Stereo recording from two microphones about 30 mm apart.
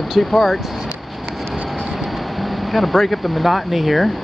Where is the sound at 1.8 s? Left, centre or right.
Centre.